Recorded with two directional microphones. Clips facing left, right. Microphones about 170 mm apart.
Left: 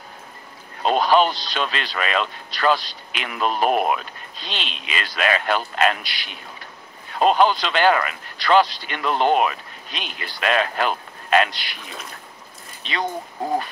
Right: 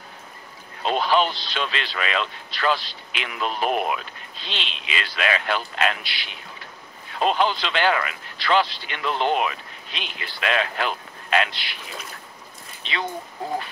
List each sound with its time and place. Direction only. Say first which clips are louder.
0.8 s speech: left 4 dB; 45° left (ahead or behind)
12.8 s speech: left 2 dB; 45° left (ahead or behind)